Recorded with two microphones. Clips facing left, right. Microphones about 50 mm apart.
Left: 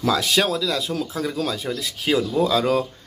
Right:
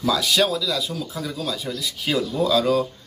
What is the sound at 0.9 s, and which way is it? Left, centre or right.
Speech, left.